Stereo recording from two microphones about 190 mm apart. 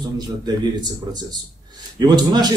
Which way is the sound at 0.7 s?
20° right (ahead or behind).